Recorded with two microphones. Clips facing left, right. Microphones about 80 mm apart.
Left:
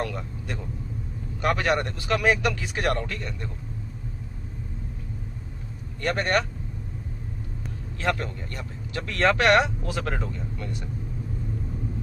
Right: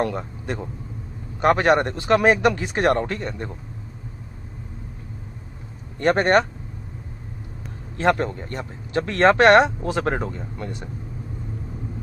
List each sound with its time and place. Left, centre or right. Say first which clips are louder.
0.0 s speech: right 6 dB; right
5.9 s speech: right 7 dB; right
8.0 s speech: right 7 dB; right